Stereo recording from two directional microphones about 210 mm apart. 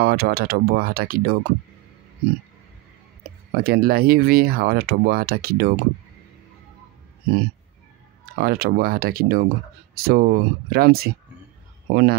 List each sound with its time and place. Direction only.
0.0 s speech: 45° right (ahead or behind)
3.5 s speech: 45° right (ahead or behind)
8.4 s speech: 45° right (ahead or behind)